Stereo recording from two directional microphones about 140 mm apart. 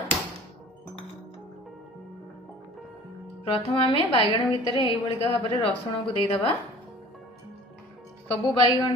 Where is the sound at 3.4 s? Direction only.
40° left (ahead or behind).